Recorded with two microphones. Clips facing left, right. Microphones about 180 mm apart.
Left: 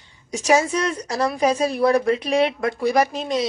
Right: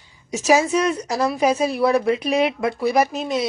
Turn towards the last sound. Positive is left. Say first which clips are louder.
# even
turn(degrees=-5)  # may be behind; listen again after turning